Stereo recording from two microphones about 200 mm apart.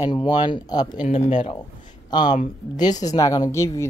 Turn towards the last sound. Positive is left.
turn(degrees=15)  # may be behind; listen again after turning